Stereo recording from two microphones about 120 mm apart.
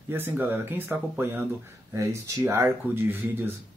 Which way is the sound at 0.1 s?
15° right (ahead or behind).